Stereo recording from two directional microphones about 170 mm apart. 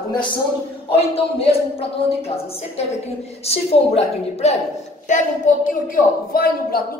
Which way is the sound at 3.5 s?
40° left (ahead or behind).